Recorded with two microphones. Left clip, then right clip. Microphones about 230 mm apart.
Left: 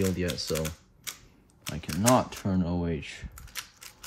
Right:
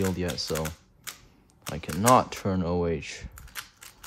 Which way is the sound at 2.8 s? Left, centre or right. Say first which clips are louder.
Right 5 dB; right.